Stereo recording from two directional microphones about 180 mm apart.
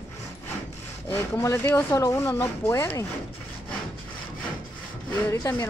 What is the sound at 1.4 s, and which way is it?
Speech, 15° left (ahead or behind).